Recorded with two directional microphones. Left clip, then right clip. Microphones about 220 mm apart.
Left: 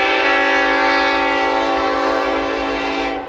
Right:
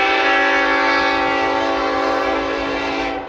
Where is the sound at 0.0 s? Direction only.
Centre (ahead or behind).